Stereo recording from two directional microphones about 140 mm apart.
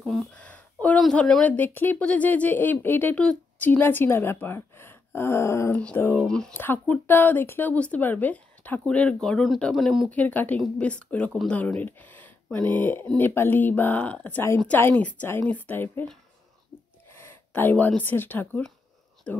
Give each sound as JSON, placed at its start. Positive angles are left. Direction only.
{"t": 0.0, "sound": "a sound", "side_deg": 0}
{"t": 1.6, "sound": "speech", "side_deg": 15}
{"t": 17.5, "sound": "speech", "side_deg": 10}